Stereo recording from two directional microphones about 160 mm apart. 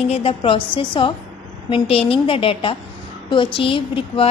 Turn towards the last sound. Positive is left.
turn(degrees=35)  # may be behind; listen again after turning